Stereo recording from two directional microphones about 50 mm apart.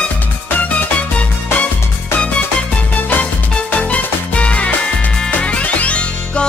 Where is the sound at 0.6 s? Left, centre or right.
Left.